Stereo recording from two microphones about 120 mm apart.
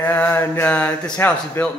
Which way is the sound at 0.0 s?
15° left (ahead or behind).